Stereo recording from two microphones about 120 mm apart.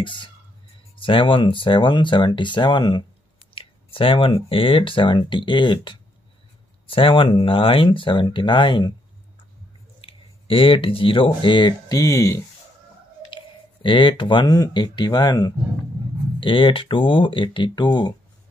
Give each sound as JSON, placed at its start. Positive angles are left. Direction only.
{"t": 0.0, "sound": "speech", "side_deg": 45}
{"t": 3.5, "sound": "a sound", "side_deg": 45}
{"t": 4.5, "sound": "speech", "side_deg": 50}
{"t": 10.0, "sound": "speech", "side_deg": 50}
{"t": 12.0, "sound": "speech", "side_deg": 25}
{"t": 13.8, "sound": "speech", "side_deg": 45}
{"t": 16.3, "sound": "speech", "side_deg": 45}